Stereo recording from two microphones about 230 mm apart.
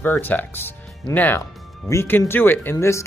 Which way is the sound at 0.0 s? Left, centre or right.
Centre.